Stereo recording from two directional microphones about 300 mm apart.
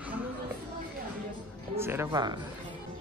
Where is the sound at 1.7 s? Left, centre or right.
Centre.